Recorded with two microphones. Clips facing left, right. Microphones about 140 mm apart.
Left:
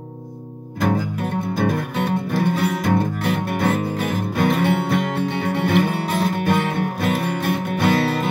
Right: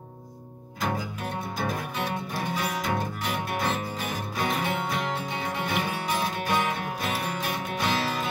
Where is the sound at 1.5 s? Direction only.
60° left (ahead or behind).